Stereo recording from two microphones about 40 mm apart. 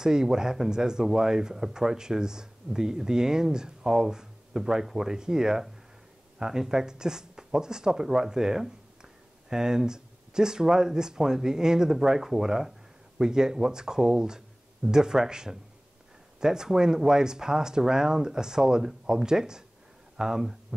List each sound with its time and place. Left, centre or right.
0.0 s speech: centre